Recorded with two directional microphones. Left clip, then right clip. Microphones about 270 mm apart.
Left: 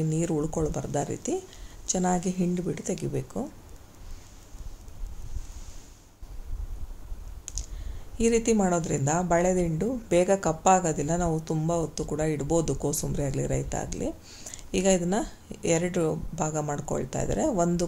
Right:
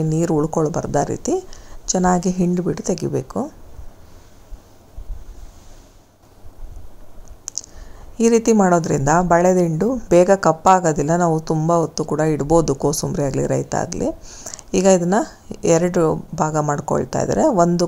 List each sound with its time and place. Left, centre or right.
0.1 s a woman's voice: centre
8.2 s a woman's voice: centre